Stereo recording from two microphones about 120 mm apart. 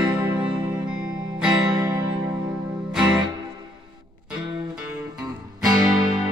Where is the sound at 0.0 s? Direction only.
10° right (ahead or behind).